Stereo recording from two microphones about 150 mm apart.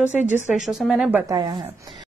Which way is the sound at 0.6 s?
Centre (ahead or behind).